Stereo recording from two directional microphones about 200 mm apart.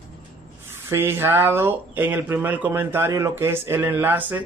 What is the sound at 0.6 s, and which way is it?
Speech, 10° right (ahead or behind).